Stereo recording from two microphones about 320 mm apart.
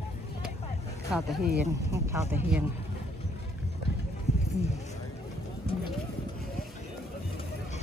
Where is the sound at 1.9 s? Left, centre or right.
Centre.